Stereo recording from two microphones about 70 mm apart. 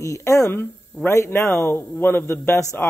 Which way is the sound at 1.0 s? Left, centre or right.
Left.